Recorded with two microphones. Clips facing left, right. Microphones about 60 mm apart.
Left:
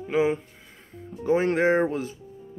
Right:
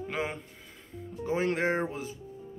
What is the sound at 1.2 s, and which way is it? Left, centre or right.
Speech, left.